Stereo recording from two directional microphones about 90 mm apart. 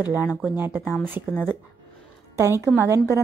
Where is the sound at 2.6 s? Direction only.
30° right (ahead or behind).